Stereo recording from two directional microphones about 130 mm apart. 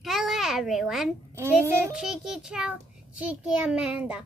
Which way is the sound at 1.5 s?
20° right (ahead or behind).